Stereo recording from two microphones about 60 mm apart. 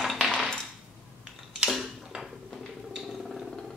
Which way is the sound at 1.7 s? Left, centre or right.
Centre.